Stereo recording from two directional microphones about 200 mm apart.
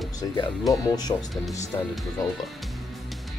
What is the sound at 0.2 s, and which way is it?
Speech, 20° left (ahead or behind).